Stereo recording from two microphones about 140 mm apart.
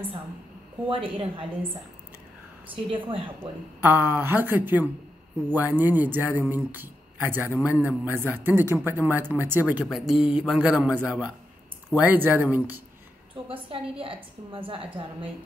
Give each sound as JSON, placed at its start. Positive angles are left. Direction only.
{"t": 0.8, "sound": "a woman's voice", "side_deg": -35}
{"t": 2.7, "sound": "a woman's voice", "side_deg": -40}
{"t": 3.8, "sound": "speech", "side_deg": -15}
{"t": 14.0, "sound": "a woman's voice", "side_deg": -40}